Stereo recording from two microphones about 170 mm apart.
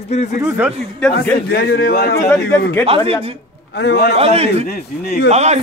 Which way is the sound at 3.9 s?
70° left (ahead or behind).